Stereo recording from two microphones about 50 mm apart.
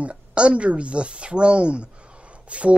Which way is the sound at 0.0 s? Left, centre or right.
Right.